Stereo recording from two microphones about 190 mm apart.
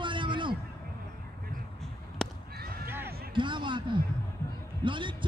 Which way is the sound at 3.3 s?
25° right (ahead or behind).